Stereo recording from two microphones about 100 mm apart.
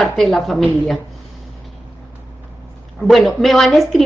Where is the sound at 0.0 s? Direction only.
5° left (ahead or behind).